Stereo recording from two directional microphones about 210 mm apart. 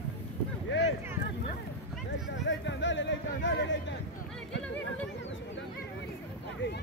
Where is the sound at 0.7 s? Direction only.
60° left (ahead or behind).